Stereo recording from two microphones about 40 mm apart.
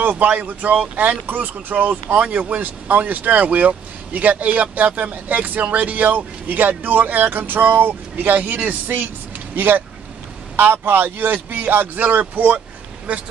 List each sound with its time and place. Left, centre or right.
0.0 s speech: right
13.1 s speech: right